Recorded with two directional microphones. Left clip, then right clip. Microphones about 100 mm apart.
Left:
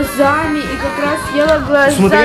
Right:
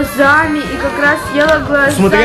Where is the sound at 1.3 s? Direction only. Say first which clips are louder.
Left 2 dB; 20° left (ahead or behind).